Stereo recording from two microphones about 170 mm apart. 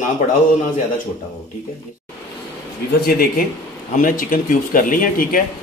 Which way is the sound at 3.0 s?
60° left (ahead or behind).